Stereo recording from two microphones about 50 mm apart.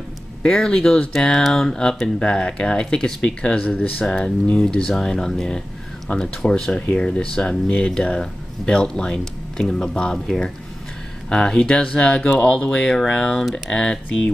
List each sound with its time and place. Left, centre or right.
0.4 s speech: centre
3.5 s speech: left
4.0 s speech: centre
12.8 s speech: centre